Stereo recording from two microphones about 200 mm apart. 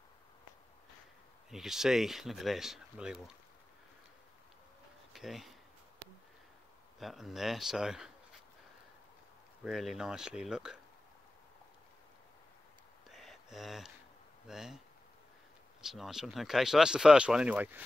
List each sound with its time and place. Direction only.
1.5 s speech: centre (ahead or behind)
5.1 s speech: centre (ahead or behind)
7.0 s speech: centre (ahead or behind)
9.6 s speech: centre (ahead or behind)
13.1 s a sound: centre (ahead or behind)
14.5 s speech: 5° right (ahead or behind)
15.8 s speech: centre (ahead or behind)